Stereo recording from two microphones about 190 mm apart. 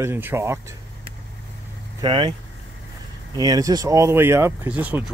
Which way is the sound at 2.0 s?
25° right (ahead or behind).